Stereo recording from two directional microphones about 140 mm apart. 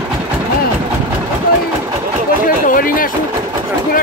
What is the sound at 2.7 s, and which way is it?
Speech, 85° left.